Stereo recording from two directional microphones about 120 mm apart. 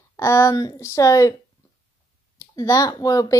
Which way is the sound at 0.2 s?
25° left (ahead or behind).